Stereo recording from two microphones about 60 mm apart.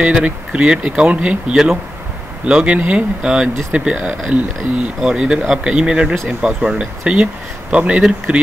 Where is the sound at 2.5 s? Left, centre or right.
Centre.